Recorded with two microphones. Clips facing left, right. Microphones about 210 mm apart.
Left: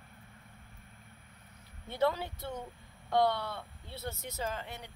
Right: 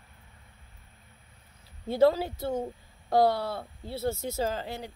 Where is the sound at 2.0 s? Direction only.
35° right (ahead or behind).